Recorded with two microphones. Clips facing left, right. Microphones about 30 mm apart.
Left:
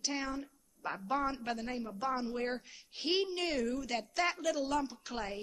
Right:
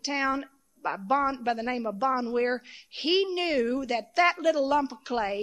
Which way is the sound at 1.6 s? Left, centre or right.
Right.